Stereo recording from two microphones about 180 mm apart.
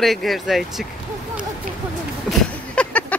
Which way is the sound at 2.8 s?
5° left (ahead or behind).